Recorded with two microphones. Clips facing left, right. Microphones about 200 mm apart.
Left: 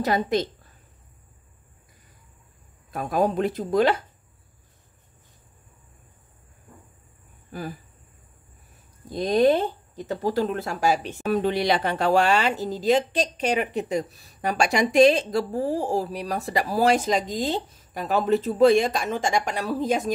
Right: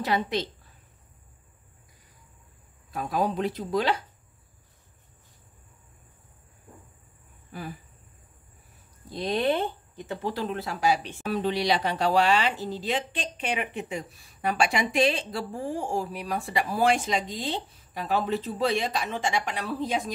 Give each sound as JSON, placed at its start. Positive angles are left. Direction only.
{"t": 0.0, "sound": "speech", "side_deg": 45}
{"t": 2.9, "sound": "speech", "side_deg": 50}
{"t": 9.1, "sound": "speech", "side_deg": 45}